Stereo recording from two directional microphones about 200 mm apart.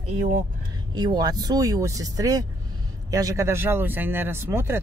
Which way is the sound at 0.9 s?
20° right (ahead or behind).